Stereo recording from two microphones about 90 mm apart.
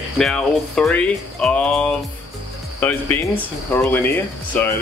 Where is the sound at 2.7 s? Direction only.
20° left (ahead or behind).